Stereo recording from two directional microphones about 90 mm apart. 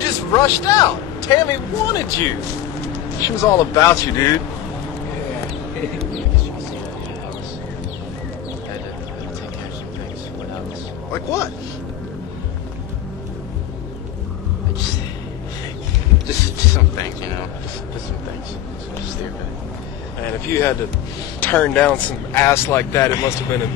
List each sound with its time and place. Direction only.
0.0 s a man's voice: 40° left (ahead or behind)
11.1 s speech: 30° left (ahead or behind)
16.7 s speech: 45° left (ahead or behind)
20.2 s speech: 30° left (ahead or behind)
21.4 s speech: 20° left (ahead or behind)